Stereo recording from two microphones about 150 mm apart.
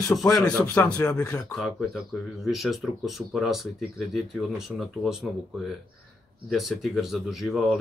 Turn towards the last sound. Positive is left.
turn(degrees=0)  # may be behind; listen again after turning